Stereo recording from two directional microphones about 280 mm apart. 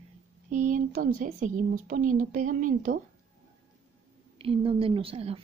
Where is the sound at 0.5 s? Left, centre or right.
Right.